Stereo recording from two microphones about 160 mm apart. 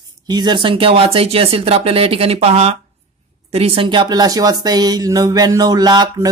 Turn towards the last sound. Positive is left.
turn(degrees=-25)  # may be behind; listen again after turning